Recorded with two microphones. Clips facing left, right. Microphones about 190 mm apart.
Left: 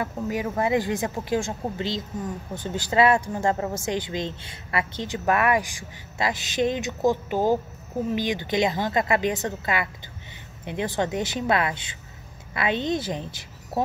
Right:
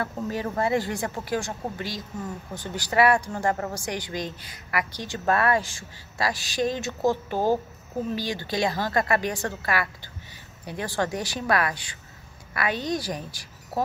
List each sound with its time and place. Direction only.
0.0 s a woman's voice: 15° left (ahead or behind)